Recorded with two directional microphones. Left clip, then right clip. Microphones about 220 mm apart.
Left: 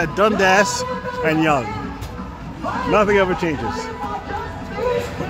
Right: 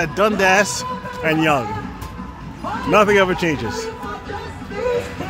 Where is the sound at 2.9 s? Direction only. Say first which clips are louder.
Right 2 dB; 20° right (ahead or behind).